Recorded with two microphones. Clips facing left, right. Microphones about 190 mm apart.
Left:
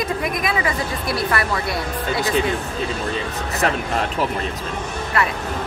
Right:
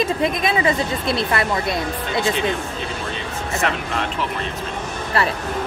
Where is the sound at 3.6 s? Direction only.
40° left (ahead or behind).